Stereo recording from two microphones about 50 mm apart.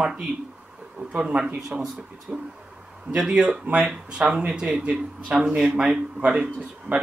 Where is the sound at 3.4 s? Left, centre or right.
Right.